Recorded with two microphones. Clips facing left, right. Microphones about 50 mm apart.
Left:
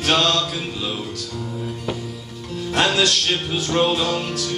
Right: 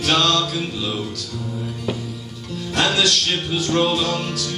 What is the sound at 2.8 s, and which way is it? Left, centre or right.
Music, centre.